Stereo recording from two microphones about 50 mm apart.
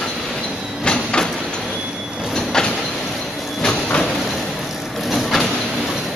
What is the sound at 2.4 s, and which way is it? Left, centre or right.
Train, centre.